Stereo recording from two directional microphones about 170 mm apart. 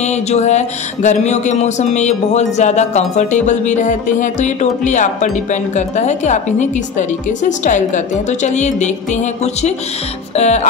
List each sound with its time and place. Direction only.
0.0 s speech: 40° left (ahead or behind)
10.3 s music: 40° left (ahead or behind)